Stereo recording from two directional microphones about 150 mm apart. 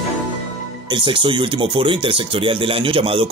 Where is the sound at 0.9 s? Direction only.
30° right (ahead or behind).